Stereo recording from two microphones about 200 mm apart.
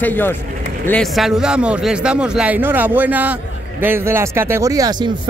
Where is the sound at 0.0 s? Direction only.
10° left (ahead or behind).